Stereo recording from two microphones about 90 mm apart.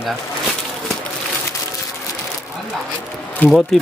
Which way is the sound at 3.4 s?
20° left (ahead or behind).